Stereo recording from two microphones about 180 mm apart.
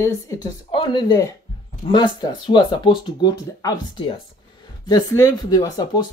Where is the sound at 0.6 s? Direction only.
25° left (ahead or behind).